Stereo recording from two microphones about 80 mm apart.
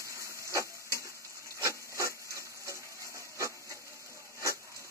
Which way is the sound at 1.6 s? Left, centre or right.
Right.